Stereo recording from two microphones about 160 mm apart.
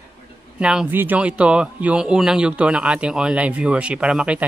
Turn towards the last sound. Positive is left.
turn(degrees=-5)  # may be behind; listen again after turning